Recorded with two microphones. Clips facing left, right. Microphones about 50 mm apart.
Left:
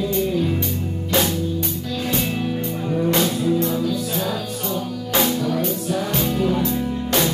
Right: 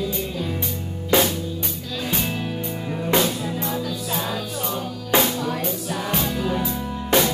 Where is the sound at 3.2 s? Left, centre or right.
Centre.